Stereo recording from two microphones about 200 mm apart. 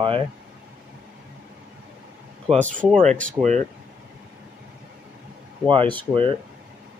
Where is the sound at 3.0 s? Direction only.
35° right (ahead or behind).